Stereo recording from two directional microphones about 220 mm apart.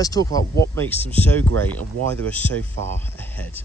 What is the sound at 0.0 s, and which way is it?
Speech, 15° left (ahead or behind).